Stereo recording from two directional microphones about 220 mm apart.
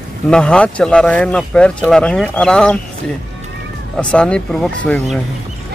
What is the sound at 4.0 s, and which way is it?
Speech, 5° left (ahead or behind).